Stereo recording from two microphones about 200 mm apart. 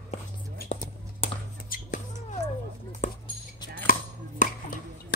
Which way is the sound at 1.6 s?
45° left (ahead or behind).